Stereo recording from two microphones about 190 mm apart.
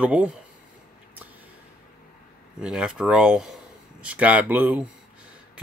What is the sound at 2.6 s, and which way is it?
A man's voice, 5° right (ahead or behind).